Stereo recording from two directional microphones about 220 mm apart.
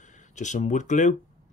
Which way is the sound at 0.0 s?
35° left (ahead or behind).